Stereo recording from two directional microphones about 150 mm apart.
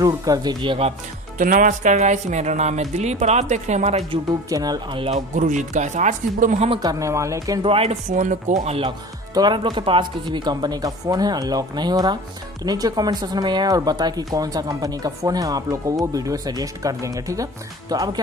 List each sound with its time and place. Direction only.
0.0 s speech: 25° right (ahead or behind)
1.4 s speech: 60° right (ahead or behind)
4.5 s speech: 25° right (ahead or behind)
5.1 s speech: 55° right (ahead or behind)
6.7 s speech: 25° right (ahead or behind)
7.6 s speech: 40° right (ahead or behind); by 8.7 s 55° right (ahead or behind)
9.3 s speech: 30° right (ahead or behind)